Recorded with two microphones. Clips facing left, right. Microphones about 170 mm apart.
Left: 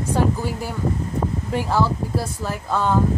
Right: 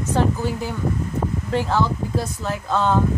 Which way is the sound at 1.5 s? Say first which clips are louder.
Even; 10° left (ahead or behind).